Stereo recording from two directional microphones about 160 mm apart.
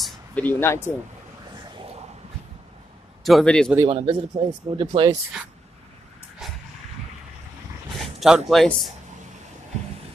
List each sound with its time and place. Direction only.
0.0 s speech: 10° left (ahead or behind)
3.3 s a man's voice: 5° left (ahead or behind)
3.9 s speech: 35° right (ahead or behind)
8.0 s dog: centre (ahead or behind)
8.5 s a man's voice: centre (ahead or behind)